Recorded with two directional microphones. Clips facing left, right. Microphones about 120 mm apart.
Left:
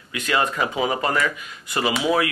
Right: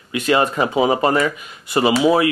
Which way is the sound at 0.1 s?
30° right (ahead or behind).